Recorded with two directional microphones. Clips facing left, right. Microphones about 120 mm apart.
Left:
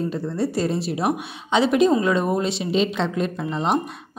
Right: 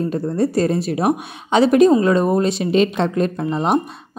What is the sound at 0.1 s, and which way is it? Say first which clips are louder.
A woman's voice: right 5 dB; 50° right (ahead or behind).